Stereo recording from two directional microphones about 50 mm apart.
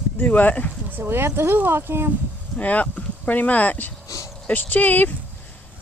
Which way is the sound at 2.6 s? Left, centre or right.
Left.